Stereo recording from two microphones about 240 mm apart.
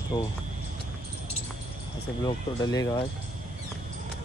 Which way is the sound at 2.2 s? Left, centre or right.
Centre.